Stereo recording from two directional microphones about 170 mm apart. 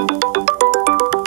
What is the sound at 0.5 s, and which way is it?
Music, 85° right.